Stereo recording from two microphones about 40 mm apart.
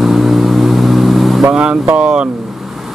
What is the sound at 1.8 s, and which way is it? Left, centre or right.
Speech, right.